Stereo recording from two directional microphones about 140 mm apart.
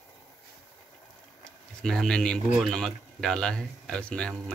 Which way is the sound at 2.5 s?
Centre (ahead or behind).